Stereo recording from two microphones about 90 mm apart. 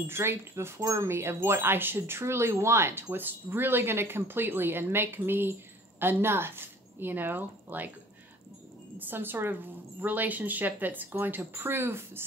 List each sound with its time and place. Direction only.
0.0 s wind chime: 25° right (ahead or behind)
8.9 s wind chime: 25° right (ahead or behind)